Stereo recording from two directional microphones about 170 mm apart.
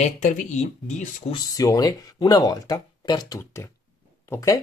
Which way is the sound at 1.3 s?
20° left (ahead or behind).